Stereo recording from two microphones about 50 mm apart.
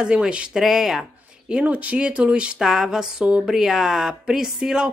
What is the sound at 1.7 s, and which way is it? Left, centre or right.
Speech, right.